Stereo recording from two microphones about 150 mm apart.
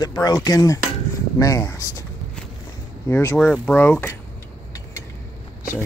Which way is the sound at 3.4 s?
5° left (ahead or behind).